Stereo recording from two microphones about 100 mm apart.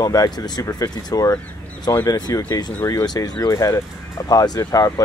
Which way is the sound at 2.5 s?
45° left (ahead or behind).